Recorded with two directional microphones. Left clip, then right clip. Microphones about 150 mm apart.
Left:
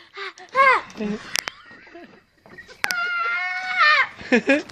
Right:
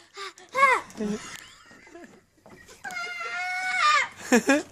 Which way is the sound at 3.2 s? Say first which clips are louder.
Left 6 dB; 10° right (ahead or behind).